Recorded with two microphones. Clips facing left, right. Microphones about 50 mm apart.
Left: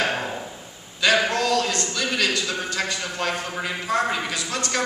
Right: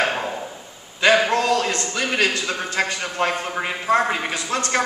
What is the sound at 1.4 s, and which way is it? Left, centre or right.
A man's voice, right.